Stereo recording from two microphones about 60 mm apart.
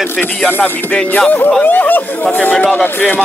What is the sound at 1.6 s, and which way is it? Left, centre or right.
Music, left.